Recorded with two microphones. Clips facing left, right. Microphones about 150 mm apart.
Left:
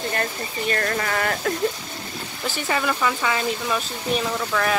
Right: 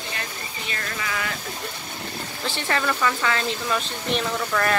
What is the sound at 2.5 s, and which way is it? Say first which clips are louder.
Speech: left 1 dB; 10° left (ahead or behind).